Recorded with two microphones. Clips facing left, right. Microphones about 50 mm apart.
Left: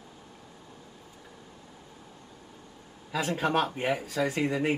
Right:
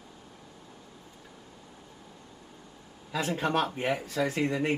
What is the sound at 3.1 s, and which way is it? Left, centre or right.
Speech, centre.